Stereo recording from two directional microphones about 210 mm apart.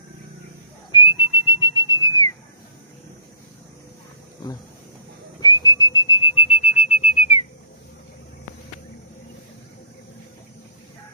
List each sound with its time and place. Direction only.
0.9 s whistle: 25° left (ahead or behind)
5.4 s whistling: 15° left (ahead or behind)